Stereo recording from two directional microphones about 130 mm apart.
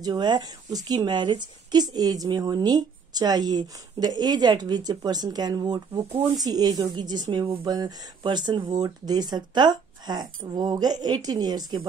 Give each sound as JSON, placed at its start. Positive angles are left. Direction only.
{"t": 0.0, "sound": "speech", "side_deg": -30}